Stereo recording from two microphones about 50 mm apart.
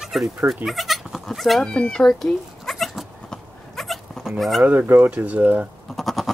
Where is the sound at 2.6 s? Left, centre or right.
Centre.